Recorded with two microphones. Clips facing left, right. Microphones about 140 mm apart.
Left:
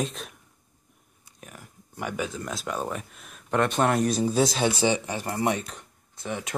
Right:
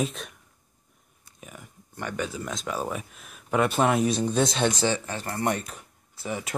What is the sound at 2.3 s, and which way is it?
Speech, centre (ahead or behind).